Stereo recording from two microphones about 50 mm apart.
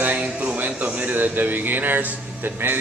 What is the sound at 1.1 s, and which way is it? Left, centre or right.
Speech, right.